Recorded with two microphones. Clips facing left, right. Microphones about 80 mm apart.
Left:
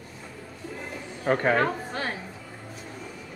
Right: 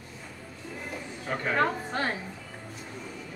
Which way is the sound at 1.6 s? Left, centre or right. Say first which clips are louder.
Even; centre.